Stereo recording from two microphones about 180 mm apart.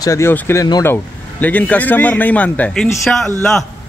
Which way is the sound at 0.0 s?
15° left (ahead or behind).